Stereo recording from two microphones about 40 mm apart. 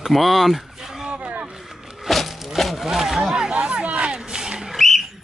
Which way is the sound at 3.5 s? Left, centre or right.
Right.